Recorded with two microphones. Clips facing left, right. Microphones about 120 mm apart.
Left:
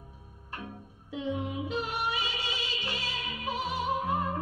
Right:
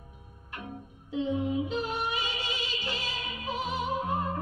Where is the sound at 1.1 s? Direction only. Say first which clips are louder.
Right 4 dB; 25° right (ahead or behind).